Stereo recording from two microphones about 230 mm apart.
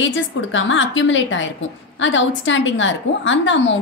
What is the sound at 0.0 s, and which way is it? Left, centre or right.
A woman's voice, left.